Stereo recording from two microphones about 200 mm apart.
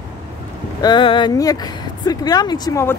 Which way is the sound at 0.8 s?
25° left (ahead or behind).